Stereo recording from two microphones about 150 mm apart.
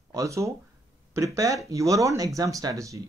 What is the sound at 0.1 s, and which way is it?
Speech, 20° right (ahead or behind).